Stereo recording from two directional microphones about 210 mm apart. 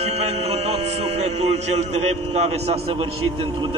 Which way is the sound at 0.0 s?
30° right (ahead or behind).